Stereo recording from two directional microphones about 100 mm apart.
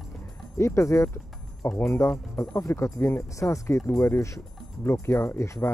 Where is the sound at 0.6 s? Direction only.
30° left (ahead or behind).